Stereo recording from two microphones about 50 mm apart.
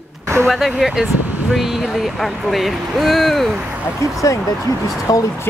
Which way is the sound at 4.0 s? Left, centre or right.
Left.